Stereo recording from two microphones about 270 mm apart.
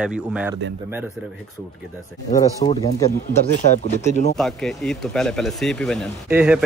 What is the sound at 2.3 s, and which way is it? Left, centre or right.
Speech, centre.